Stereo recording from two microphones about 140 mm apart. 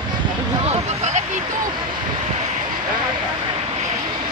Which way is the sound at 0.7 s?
55° right (ahead or behind).